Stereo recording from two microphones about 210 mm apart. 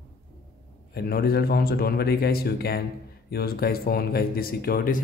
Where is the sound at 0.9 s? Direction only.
45° left (ahead or behind).